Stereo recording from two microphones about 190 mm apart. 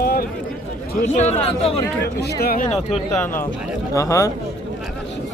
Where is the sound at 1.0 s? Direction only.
35° left (ahead or behind).